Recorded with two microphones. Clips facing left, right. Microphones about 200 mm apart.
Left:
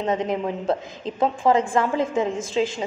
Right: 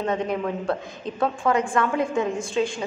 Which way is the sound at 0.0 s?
20° left (ahead or behind).